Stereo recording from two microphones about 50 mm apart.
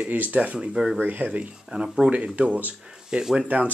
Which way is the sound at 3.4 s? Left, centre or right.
Right.